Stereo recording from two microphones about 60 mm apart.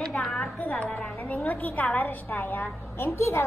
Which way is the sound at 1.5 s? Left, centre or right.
Left.